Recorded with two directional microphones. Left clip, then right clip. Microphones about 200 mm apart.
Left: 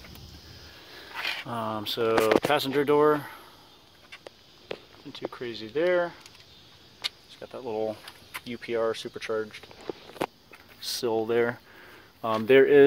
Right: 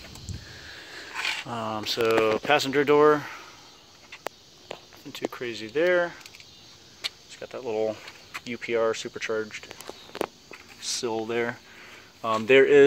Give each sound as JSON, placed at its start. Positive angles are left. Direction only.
{"t": 0.7, "sound": "a sound", "side_deg": -20}
{"t": 1.5, "sound": "speech", "side_deg": 5}
{"t": 5.1, "sound": "speech", "side_deg": -5}
{"t": 7.3, "sound": "speech", "side_deg": 0}
{"t": 10.8, "sound": "speech", "side_deg": 20}